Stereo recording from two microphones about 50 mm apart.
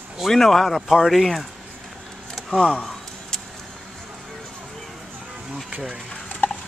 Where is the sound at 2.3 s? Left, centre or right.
Centre.